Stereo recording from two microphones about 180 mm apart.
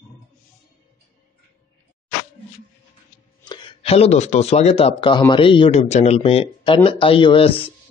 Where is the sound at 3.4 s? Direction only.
25° left (ahead or behind).